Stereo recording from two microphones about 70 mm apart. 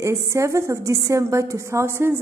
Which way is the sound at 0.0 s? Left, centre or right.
Right.